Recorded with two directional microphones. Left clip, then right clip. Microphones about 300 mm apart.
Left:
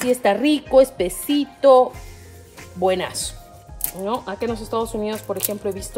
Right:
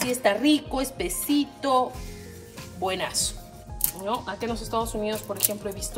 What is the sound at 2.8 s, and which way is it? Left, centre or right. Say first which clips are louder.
Speech: left 6 dB; left.